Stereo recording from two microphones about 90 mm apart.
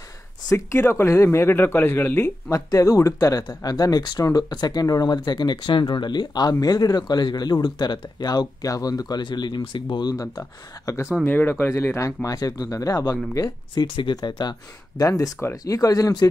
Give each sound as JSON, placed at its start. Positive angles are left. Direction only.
{"t": 0.5, "sound": "speech", "side_deg": 35}
{"t": 2.5, "sound": "speech", "side_deg": 40}
{"t": 11.2, "sound": "speech", "side_deg": 25}
{"t": 13.7, "sound": "speech", "side_deg": 55}
{"t": 15.0, "sound": "speech", "side_deg": 40}